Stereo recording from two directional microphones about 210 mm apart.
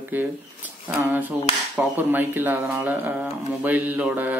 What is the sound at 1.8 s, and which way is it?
Speech, 10° right (ahead or behind).